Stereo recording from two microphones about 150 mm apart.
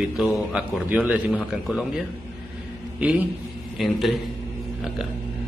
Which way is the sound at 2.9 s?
10° right (ahead or behind).